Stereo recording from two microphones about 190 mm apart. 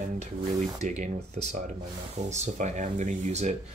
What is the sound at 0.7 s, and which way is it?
Speech, 40° right (ahead or behind).